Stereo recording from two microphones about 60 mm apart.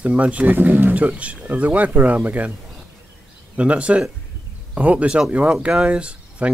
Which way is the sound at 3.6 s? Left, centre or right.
Right.